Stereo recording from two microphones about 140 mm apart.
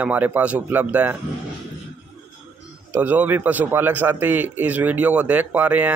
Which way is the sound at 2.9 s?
10° right (ahead or behind).